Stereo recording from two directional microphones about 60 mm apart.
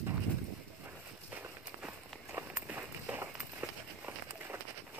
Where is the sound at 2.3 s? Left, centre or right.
Right.